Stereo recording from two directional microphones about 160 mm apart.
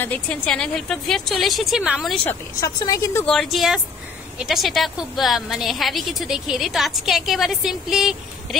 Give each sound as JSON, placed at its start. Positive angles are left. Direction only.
{"t": 0.0, "sound": "a woman's voice", "side_deg": 10}
{"t": 2.6, "sound": "a woman's voice", "side_deg": 20}
{"t": 3.3, "sound": "a woman's voice", "side_deg": 0}